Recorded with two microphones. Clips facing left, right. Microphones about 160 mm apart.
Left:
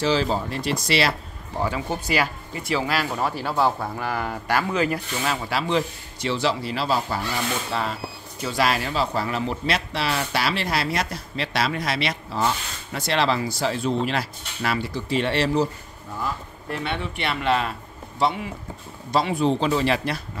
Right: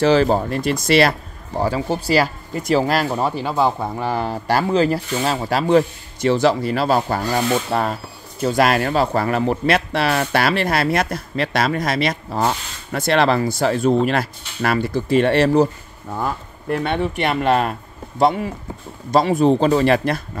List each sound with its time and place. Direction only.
0.0 s speech: 55° right (ahead or behind)
1.6 s speech: 35° right (ahead or behind)
3.2 s speech: 20° right (ahead or behind); by 20.2 s 50° right (ahead or behind)